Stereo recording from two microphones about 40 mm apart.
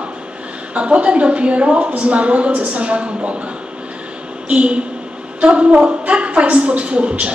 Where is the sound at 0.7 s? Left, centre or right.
Right.